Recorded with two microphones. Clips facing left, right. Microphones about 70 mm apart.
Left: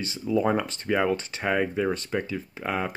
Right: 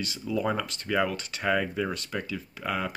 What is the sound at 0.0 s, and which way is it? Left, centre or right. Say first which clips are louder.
Speech: left 4 dB; left.